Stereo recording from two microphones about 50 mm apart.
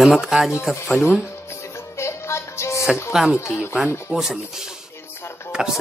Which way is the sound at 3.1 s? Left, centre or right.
Centre.